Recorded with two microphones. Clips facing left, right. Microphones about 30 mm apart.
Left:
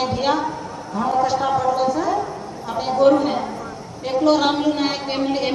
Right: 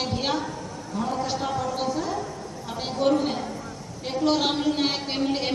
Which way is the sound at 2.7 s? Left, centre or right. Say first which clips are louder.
Left 8 dB; centre.